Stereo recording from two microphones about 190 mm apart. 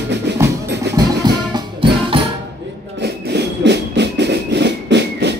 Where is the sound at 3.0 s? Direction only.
65° right (ahead or behind).